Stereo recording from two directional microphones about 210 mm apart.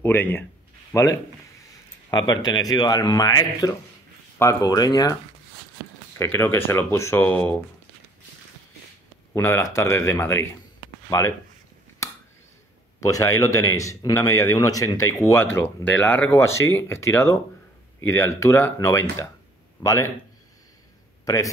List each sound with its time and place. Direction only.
0.0 s a man's voice: 10° left (ahead or behind)
6.1 s speech: 10° left (ahead or behind)
9.3 s speech: 15° left (ahead or behind)
13.0 s speech: 15° left (ahead or behind)